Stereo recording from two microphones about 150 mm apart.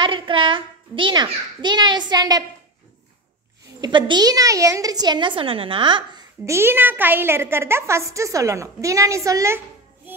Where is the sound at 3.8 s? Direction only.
30° right (ahead or behind).